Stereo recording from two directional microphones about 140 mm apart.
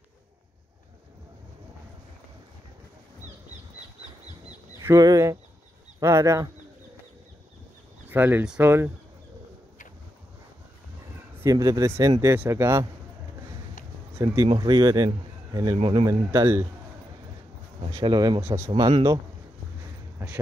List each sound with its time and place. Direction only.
4.8 s speech: 25° right (ahead or behind)
8.1 s speech: 15° right (ahead or behind)
11.3 s speech: 20° right (ahead or behind)
14.1 s speech: 25° right (ahead or behind)
16.3 s speech: 20° right (ahead or behind)
18.0 s speech: 30° right (ahead or behind)
18.4 s speech: 20° right (ahead or behind)
18.8 s speech: 30° right (ahead or behind)
20.2 s speech: 15° right (ahead or behind)